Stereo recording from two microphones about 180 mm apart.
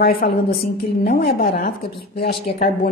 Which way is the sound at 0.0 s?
55° left (ahead or behind).